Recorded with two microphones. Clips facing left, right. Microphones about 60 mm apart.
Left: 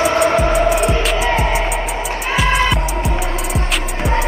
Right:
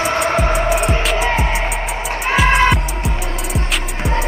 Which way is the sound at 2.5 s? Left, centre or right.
Right.